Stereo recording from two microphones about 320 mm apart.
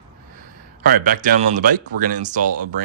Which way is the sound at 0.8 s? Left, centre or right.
Right.